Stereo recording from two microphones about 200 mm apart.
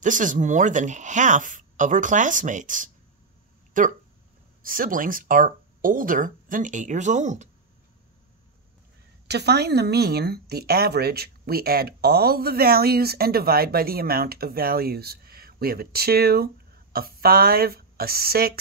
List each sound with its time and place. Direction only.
0.0 s a woman's voice: 40° right (ahead or behind)
9.3 s a woman's voice: 55° right (ahead or behind)